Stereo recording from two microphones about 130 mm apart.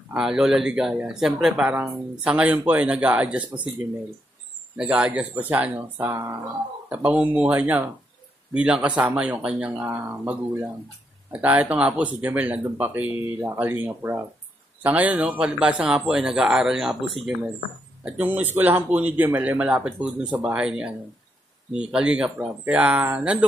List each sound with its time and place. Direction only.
0.1 s speech: 5° right (ahead or behind)
4.7 s speech: 10° right (ahead or behind)
11.3 s speech: 10° right (ahead or behind)